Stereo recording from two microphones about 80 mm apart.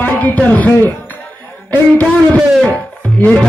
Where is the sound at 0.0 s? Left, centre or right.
Left.